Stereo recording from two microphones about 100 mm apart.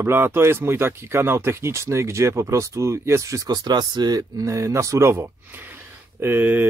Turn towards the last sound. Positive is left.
turn(degrees=-20)  # may be behind; listen again after turning